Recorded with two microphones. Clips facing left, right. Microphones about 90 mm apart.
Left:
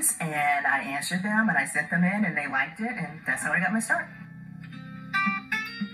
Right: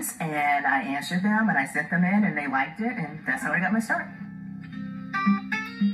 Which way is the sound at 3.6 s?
5° right (ahead or behind).